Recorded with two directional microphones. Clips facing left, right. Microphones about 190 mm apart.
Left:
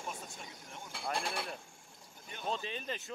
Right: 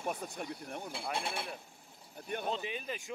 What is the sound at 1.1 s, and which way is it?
Speech, 5° right (ahead or behind).